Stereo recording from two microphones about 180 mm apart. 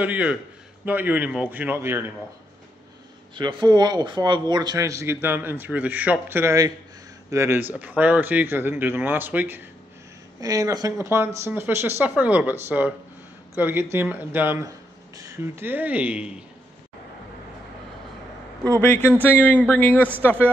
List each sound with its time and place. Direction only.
0.0 s speech: 10° right (ahead or behind)
3.3 s speech: 25° right (ahead or behind); by 16.3 s 10° right (ahead or behind)
18.8 s a man's voice: 10° left (ahead or behind)